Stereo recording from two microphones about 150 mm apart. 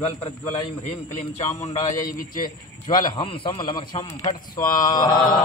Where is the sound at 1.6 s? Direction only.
45° left (ahead or behind).